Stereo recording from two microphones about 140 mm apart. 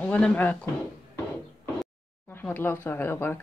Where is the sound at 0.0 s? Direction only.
10° left (ahead or behind).